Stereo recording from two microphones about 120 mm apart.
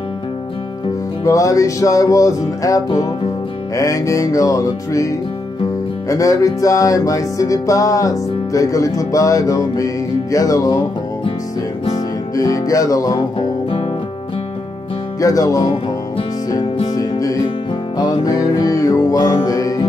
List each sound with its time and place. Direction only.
1.2 s music: 30° left (ahead or behind)
11.9 s music: 30° left (ahead or behind)
15.1 s music: 30° left (ahead or behind)
16.6 s music: 45° left (ahead or behind)
17.9 s music: 35° left (ahead or behind)